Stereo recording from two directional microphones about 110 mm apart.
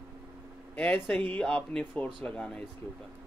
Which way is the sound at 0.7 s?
15° left (ahead or behind).